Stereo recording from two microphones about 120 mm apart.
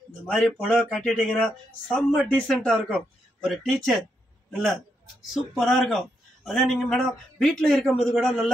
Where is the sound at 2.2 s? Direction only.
Centre (ahead or behind).